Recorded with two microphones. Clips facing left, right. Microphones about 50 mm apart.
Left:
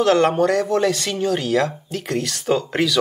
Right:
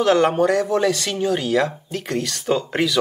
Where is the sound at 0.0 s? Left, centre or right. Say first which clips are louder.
Even; centre.